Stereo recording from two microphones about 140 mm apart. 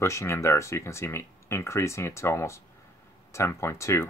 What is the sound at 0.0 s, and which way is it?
Speech, 20° left (ahead or behind).